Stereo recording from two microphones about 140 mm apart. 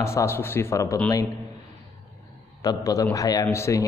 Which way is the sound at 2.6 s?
25° left (ahead or behind).